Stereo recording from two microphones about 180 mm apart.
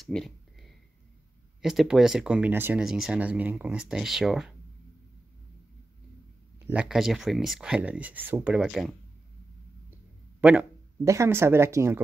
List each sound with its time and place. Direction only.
0.0 s a sound: centre (ahead or behind)
1.6 s speech: centre (ahead or behind)
6.6 s speech: 5° right (ahead or behind)
10.4 s speech: 10° right (ahead or behind)